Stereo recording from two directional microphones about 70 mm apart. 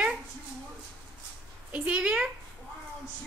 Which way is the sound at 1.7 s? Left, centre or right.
Centre.